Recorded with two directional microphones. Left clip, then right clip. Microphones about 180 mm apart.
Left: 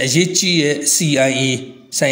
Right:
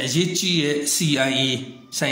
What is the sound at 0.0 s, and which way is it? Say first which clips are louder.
A man's voice: left 6 dB; 30° left (ahead or behind).